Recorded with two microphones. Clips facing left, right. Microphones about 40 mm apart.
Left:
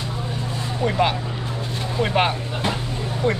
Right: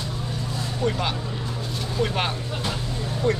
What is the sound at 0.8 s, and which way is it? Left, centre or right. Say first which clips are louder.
Speech: left 5 dB; left.